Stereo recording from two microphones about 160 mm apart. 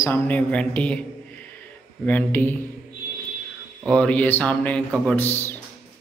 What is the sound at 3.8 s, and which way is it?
Speech, 5° left (ahead or behind).